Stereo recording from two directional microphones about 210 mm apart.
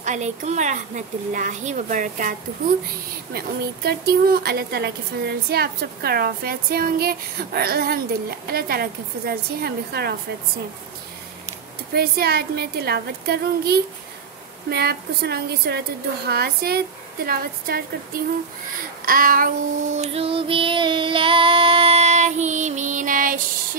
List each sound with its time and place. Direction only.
0.0 s speech: 35° right (ahead or behind)
3.3 s speech: 45° right (ahead or behind)
11.9 s speech: 50° right (ahead or behind)
19.0 s child singing: 45° right (ahead or behind)